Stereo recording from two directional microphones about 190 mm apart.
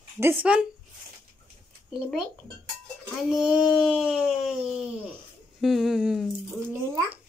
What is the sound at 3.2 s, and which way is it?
Speech, centre (ahead or behind).